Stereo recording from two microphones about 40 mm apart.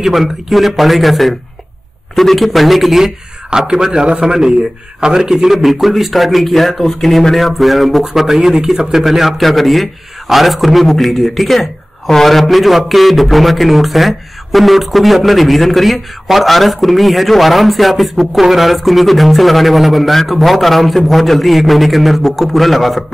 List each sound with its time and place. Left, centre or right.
0.0 s a man's voice: centre
3.0 s a man's voice: centre